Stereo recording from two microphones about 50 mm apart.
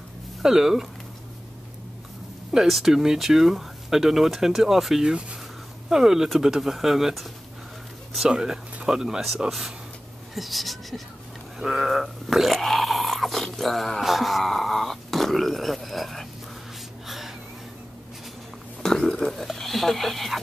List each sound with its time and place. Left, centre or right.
0.4 s speech: centre
2.5 s speech: centre
5.0 s speech: centre
8.3 s speech: centre
11.5 s grunt: centre
14.0 s speech: centre
18.8 s speech: centre